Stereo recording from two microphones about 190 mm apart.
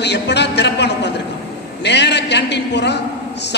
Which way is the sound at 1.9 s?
65° left (ahead or behind).